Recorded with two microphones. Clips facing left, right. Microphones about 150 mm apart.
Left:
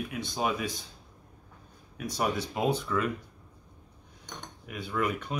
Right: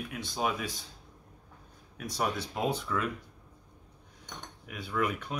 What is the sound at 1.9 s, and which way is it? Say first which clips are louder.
Speech: left 2 dB; centre (ahead or behind).